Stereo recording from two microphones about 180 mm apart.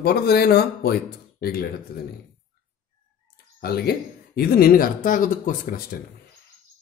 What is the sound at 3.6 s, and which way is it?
Speech, 60° left (ahead or behind).